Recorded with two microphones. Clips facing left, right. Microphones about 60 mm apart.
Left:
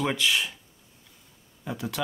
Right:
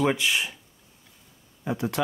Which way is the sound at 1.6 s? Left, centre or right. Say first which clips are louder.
Right 5 dB; right.